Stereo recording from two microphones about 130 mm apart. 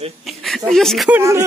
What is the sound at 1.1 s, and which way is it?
Speech, 20° right (ahead or behind).